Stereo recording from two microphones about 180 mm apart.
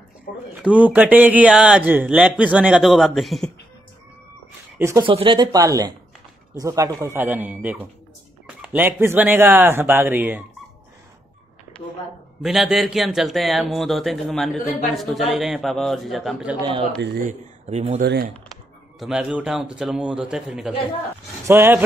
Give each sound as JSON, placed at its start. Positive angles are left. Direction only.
{"t": 0.6, "sound": "speech", "side_deg": -5}
{"t": 4.7, "sound": "speech", "side_deg": -15}
{"t": 5.0, "sound": "speech", "side_deg": -30}
{"t": 12.4, "sound": "a man's voice", "side_deg": -5}
{"t": 17.2, "sound": "speech", "side_deg": -40}
{"t": 18.0, "sound": "speech", "side_deg": -70}
{"t": 18.9, "sound": "a man's voice", "side_deg": -5}
{"t": 21.5, "sound": "speech", "side_deg": -15}